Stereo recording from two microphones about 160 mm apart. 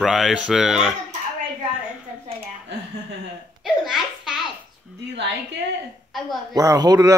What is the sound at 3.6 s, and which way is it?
Belly laugh, 5° right (ahead or behind).